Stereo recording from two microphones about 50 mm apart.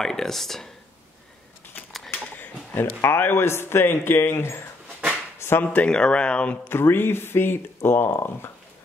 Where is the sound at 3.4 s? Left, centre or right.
Left.